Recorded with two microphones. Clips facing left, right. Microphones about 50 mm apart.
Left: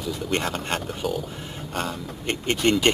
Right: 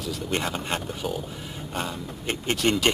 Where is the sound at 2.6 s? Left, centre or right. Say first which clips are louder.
Left 3 dB; centre.